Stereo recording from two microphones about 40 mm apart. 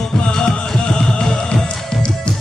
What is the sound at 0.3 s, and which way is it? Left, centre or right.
Music, centre.